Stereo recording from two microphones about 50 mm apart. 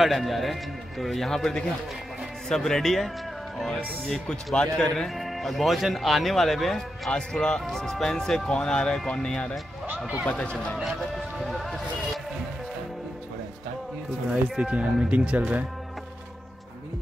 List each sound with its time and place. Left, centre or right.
0.0 s speech: centre
5.1 s speech: centre
7.1 s speech: centre
10.8 s speech: centre
14.6 s speech: right